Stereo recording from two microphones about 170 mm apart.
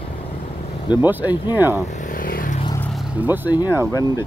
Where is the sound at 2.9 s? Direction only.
10° right (ahead or behind).